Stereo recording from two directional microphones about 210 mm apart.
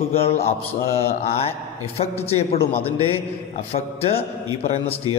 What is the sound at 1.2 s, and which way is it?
A man's voice, 30° left (ahead or behind).